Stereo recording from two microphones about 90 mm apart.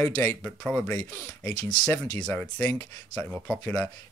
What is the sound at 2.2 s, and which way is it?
Speech, 10° left (ahead or behind).